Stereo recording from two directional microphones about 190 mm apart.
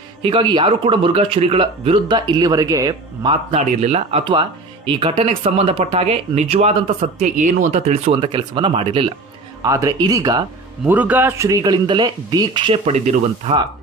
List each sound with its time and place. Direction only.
0.2 s speech: 25° right (ahead or behind)
3.5 s speech: 35° right (ahead or behind); by 10.4 s 20° right (ahead or behind)
10.9 s speech: 10° right (ahead or behind); by 13.6 s 35° right (ahead or behind)